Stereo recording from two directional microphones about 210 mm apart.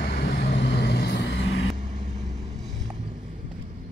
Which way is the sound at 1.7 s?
35° right (ahead or behind).